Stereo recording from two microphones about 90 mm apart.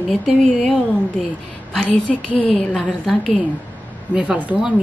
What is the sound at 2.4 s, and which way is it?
Speech, centre (ahead or behind).